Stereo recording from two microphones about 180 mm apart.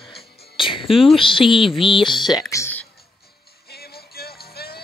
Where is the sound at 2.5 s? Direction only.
10° left (ahead or behind).